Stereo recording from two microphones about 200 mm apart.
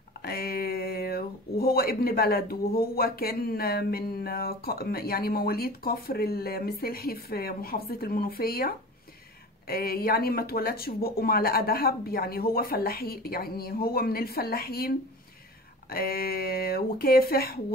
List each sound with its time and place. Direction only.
0.2 s speech: 50° left (ahead or behind)